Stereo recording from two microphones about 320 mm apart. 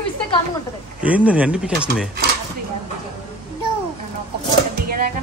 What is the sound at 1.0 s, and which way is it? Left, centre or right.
Speech, centre.